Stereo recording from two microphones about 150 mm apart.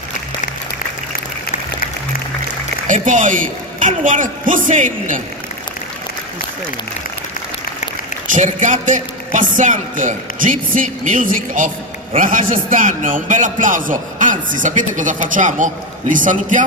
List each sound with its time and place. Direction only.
2.9 s a man's voice: 60° right (ahead or behind)
8.3 s a man's voice: 55° right (ahead or behind)